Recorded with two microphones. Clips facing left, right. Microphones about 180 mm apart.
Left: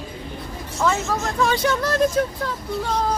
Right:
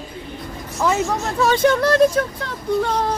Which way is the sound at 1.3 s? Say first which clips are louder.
Right 4 dB; 40° right (ahead or behind).